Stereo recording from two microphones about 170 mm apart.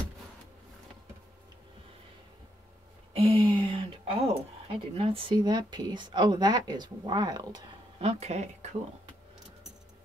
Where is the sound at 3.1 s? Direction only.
35° right (ahead or behind).